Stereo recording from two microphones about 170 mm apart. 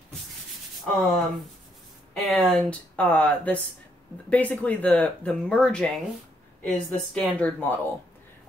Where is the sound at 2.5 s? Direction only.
10° left (ahead or behind).